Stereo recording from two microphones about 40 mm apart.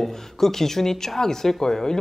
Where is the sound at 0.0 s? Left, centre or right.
Centre.